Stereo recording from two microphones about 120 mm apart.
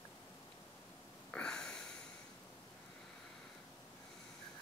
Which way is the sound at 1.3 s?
5° left (ahead or behind).